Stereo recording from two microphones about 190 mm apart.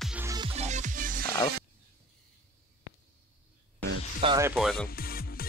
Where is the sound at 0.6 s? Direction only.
40° right (ahead or behind).